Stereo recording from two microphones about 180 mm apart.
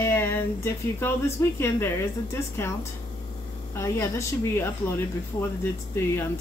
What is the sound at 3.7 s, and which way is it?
Speech, 15° left (ahead or behind).